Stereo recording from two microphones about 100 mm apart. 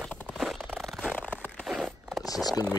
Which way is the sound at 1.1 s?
15° left (ahead or behind).